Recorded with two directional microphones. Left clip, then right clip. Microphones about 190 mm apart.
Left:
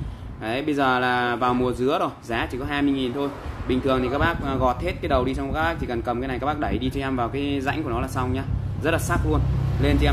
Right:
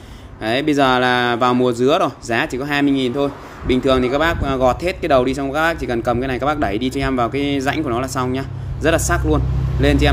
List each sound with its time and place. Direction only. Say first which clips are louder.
0.4 s speech: right 7 dB; 45° right (ahead or behind)